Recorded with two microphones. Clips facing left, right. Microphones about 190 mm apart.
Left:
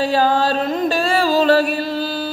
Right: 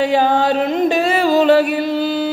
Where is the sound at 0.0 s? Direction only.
20° right (ahead or behind).